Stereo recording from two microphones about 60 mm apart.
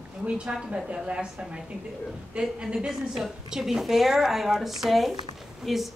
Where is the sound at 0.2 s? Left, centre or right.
Centre.